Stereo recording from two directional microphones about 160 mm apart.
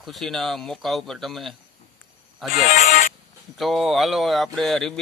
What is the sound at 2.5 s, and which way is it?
Speech, 50° left (ahead or behind).